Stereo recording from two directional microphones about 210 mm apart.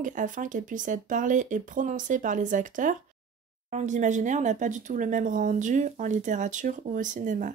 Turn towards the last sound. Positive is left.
turn(degrees=-35)  # may be behind; listen again after turning